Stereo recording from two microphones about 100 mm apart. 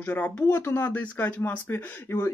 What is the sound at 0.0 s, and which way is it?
Speech, 15° left (ahead or behind).